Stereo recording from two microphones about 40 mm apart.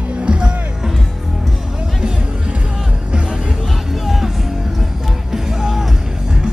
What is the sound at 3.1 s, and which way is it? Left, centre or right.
Music, right.